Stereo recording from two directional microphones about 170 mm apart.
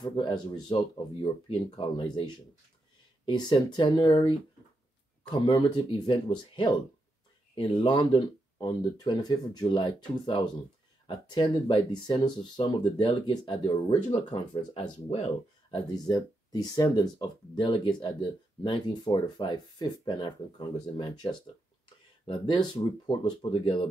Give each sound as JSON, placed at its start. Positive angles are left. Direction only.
{"t": 0.0, "sound": "speech", "side_deg": 25}
{"t": 14.1, "sound": "speech", "side_deg": 40}
{"t": 15.7, "sound": "speech", "side_deg": 25}